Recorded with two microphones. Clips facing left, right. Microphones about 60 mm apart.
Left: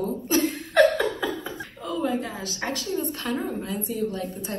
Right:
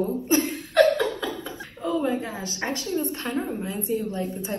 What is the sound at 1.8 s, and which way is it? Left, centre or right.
A woman's voice, right.